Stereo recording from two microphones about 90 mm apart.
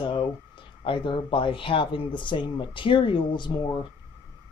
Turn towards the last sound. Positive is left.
turn(degrees=55)  # may be behind; listen again after turning